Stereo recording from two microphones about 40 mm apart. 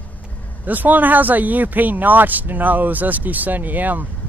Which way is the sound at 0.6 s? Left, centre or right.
Right.